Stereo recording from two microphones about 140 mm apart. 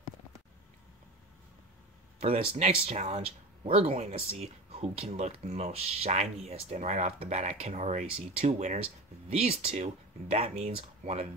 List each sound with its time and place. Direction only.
2.1 s speech: 40° right (ahead or behind)